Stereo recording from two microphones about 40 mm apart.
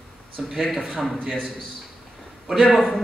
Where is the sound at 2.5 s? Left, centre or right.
Centre.